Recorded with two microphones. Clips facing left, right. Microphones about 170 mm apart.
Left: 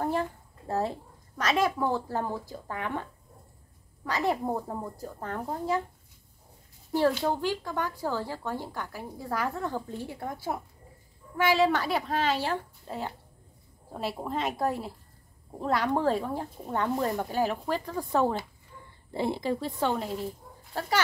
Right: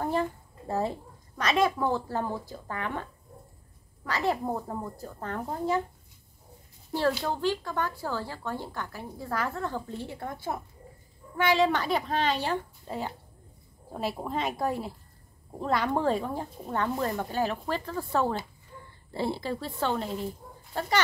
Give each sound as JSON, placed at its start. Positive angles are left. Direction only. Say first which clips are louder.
{"t": 0.0, "sound": "a woman's voice", "louder": "right 1 dB", "side_deg": 0}
{"t": 4.0, "sound": "speech", "louder": "even", "side_deg": 10}
{"t": 7.2, "sound": "a woman's voice", "louder": "even", "side_deg": 15}